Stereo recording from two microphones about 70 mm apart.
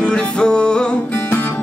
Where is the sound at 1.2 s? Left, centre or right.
Left.